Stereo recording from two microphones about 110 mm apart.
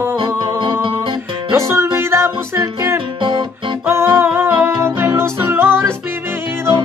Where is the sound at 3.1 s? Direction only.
50° right (ahead or behind).